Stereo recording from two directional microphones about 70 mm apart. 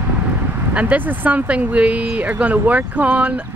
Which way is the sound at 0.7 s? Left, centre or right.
Right.